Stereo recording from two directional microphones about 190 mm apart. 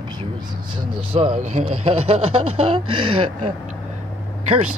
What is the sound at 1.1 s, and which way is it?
Speech, 35° right (ahead or behind).